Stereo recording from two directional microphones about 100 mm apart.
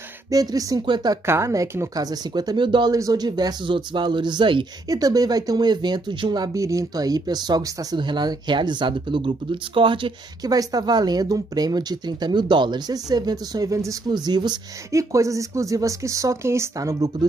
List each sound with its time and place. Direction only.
0.3 s speech: 40° right (ahead or behind)
1.2 s speech: 25° right (ahead or behind); by 2.9 s 55° right (ahead or behind)
2.9 s speech: 40° right (ahead or behind)
4.8 s speech: 40° right (ahead or behind); by 10.1 s 55° right (ahead or behind)
10.4 s speech: 40° right (ahead or behind)
14.9 s speech: 30° right (ahead or behind)